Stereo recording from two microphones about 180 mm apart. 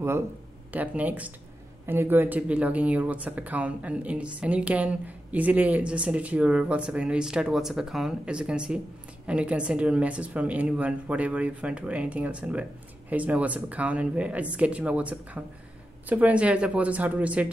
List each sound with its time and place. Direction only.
0.7 s speech: 10° right (ahead or behind)